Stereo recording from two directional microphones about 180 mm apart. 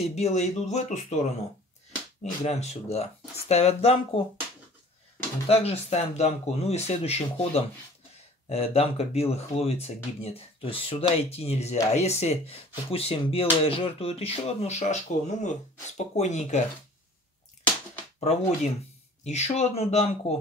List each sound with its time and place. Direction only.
0.0 s speech: 35° left (ahead or behind)
2.4 s speech: 40° left (ahead or behind)
5.5 s speech: 35° left (ahead or behind)
18.2 s speech: 35° left (ahead or behind)